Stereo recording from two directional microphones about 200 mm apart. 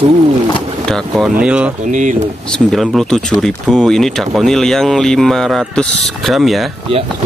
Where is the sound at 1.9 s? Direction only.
40° right (ahead or behind).